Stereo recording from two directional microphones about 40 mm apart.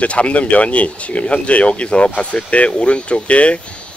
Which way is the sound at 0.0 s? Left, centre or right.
Left.